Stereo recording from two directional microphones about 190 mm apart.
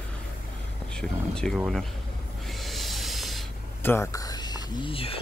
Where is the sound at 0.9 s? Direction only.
5° left (ahead or behind).